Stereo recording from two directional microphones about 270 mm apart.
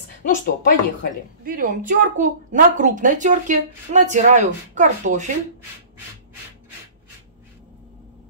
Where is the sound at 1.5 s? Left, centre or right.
Right.